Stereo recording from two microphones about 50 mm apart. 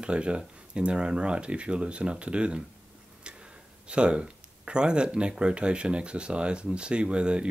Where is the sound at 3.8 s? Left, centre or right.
Right.